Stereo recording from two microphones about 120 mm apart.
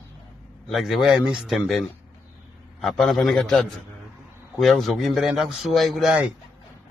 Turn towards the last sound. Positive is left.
turn(degrees=-5)  # may be behind; listen again after turning